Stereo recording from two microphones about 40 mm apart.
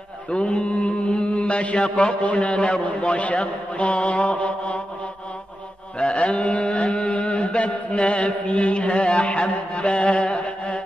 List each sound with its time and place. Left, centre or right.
0.3 s mantra: left
5.9 s mantra: left